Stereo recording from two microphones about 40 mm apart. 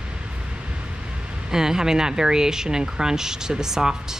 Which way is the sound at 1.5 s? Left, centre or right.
Centre.